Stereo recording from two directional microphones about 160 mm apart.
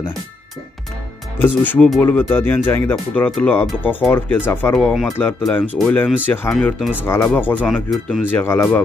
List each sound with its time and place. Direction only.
1.4 s speech: 10° left (ahead or behind)
4.7 s speech: centre (ahead or behind)
6.5 s speech: centre (ahead or behind)
7.0 s speech: 15° left (ahead or behind)
7.7 s speech: centre (ahead or behind)
8.3 s speech: 15° left (ahead or behind)